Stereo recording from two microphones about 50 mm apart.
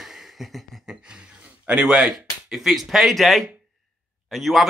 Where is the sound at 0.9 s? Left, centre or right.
Centre.